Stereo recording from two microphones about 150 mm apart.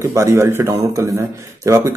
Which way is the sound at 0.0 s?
20° right (ahead or behind).